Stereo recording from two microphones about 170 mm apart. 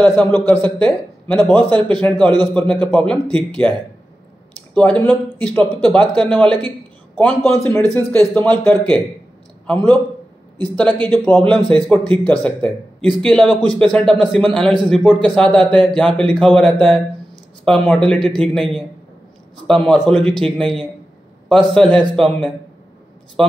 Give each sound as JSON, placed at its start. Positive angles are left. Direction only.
{"t": 0.0, "sound": "a man's voice", "side_deg": 10}
{"t": 4.7, "sound": "a man's voice", "side_deg": 5}
{"t": 10.6, "sound": "a man's voice", "side_deg": 10}